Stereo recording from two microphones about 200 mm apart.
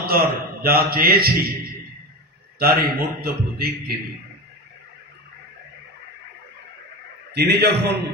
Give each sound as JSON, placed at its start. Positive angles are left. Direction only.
{"t": 0.0, "sound": "a man's voice", "side_deg": -50}
{"t": 2.6, "sound": "a man's voice", "side_deg": -50}
{"t": 7.3, "sound": "a man's voice", "side_deg": -55}